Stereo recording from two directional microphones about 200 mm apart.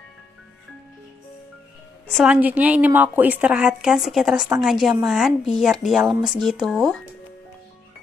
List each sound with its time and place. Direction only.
2.1 s a woman's voice: 5° right (ahead or behind)